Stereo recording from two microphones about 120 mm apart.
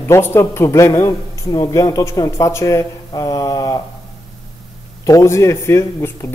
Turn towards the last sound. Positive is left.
turn(degrees=20)  # may be behind; listen again after turning